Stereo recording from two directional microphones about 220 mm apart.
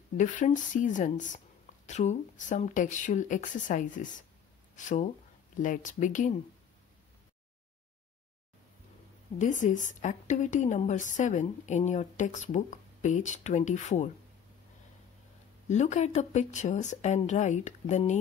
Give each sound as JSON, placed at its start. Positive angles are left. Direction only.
{"t": 0.2, "sound": "a woman's voice", "side_deg": 35}
{"t": 9.4, "sound": "a woman's voice", "side_deg": 35}
{"t": 15.7, "sound": "a woman's voice", "side_deg": 30}